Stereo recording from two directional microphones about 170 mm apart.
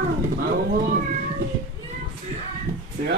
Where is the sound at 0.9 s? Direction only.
55° right (ahead or behind).